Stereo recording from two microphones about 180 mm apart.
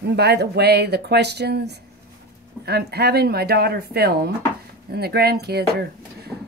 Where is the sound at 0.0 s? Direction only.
65° right (ahead or behind).